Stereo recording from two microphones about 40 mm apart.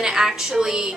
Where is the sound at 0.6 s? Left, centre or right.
Centre.